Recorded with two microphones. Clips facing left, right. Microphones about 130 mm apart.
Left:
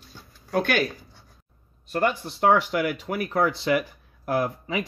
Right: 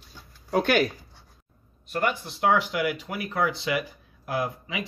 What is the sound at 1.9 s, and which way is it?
Speech, 40° left (ahead or behind).